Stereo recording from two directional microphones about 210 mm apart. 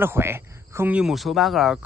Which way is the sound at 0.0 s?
10° right (ahead or behind).